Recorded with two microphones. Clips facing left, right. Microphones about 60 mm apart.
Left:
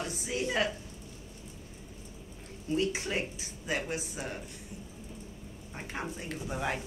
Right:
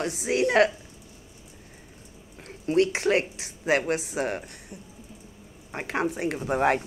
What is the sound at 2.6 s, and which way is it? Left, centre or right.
Speech, right.